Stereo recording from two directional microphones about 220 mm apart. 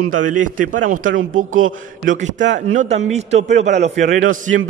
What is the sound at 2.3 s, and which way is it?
Speech, 55° right (ahead or behind).